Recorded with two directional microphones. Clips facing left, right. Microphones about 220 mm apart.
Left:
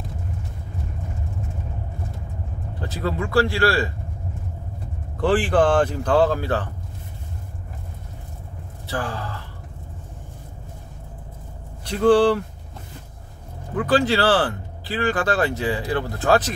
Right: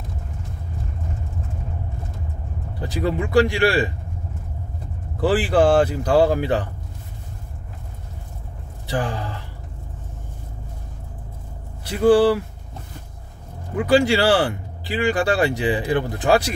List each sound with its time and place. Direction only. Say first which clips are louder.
2.8 s speech: right 3 dB; 15° right (ahead or behind)
5.2 s speech: right 1 dB; 5° right (ahead or behind)
8.9 s speech: right 3 dB; 15° right (ahead or behind)
11.8 s speech: right 1 dB; 5° right (ahead or behind)
13.7 s speech: right 2 dB; 10° right (ahead or behind)